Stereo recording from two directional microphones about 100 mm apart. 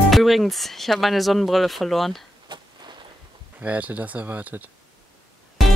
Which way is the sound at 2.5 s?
55° right (ahead or behind).